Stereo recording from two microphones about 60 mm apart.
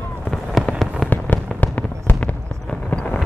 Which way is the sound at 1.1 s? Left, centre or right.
Left.